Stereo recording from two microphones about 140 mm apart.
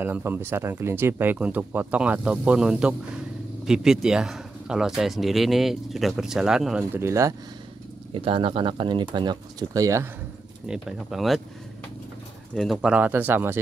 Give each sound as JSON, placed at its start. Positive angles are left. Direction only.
{"t": 0.0, "sound": "speech", "side_deg": -15}
{"t": 6.8, "sound": "speech", "side_deg": -15}
{"t": 8.1, "sound": "speech", "side_deg": -40}
{"t": 10.7, "sound": "speech", "side_deg": -5}
{"t": 12.5, "sound": "speech", "side_deg": 0}